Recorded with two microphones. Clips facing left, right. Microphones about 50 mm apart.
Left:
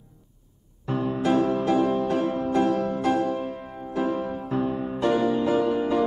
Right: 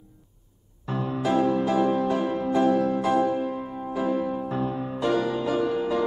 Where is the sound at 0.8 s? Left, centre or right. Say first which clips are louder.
Left 2 dB; centre.